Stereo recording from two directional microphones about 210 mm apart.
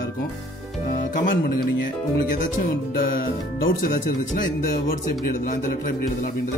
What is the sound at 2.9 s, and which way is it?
Music, 45° left (ahead or behind).